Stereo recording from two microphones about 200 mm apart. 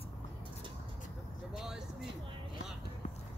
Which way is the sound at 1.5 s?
Centre (ahead or behind).